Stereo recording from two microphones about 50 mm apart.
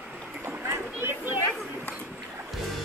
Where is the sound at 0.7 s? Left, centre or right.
Right.